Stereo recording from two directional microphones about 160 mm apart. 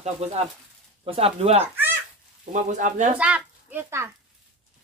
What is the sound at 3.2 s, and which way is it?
Speech, 10° right (ahead or behind).